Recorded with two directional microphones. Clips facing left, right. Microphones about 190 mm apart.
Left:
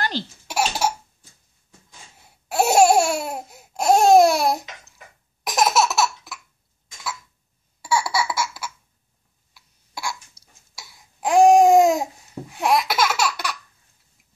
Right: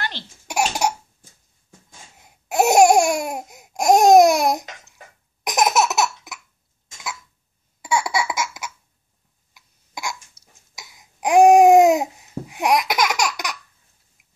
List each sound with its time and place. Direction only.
0.5 s cough: 15° right (ahead or behind)
2.2 s laughter: 15° right (ahead or behind)
7.8 s laughter: 20° right (ahead or behind)
9.5 s hiccup: 15° right (ahead or behind)
10.4 s cough: 30° left (ahead or behind)
10.7 s babbling: 20° right (ahead or behind)